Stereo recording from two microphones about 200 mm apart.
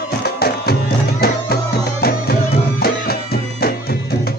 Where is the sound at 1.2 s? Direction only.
50° left (ahead or behind).